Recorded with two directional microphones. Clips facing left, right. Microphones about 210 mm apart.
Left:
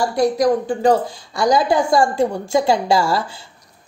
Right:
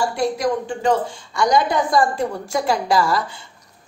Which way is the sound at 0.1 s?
40° left (ahead or behind).